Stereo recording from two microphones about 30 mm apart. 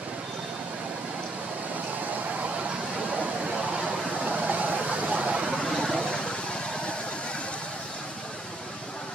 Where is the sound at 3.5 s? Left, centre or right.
Right.